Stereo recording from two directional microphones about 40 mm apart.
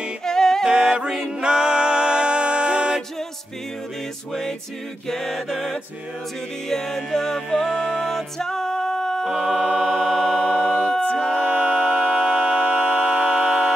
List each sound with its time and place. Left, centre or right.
0.2 s a capella: centre
0.7 s music: right
4.3 s music: centre
5.0 s mantra: centre
6.7 s music: centre
9.2 s a capella: centre
9.8 s choir: centre
10.4 s a capella: left
11.1 s a capella: centre
11.4 s a capella: right
11.7 s a capella: centre